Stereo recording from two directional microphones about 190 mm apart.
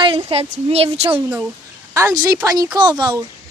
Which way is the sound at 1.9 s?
15° right (ahead or behind).